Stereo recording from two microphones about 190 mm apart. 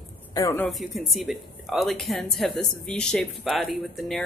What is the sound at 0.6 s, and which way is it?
A woman's voice, centre (ahead or behind).